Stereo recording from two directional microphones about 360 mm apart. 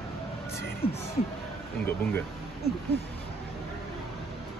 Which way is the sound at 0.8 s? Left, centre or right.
Centre.